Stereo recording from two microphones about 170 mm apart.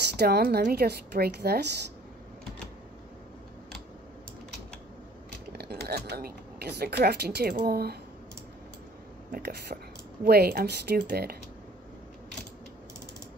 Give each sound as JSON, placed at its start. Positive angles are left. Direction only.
{"t": 0.1, "sound": "speech", "side_deg": -70}
{"t": 5.5, "sound": "speech", "side_deg": -70}
{"t": 9.3, "sound": "speech", "side_deg": -70}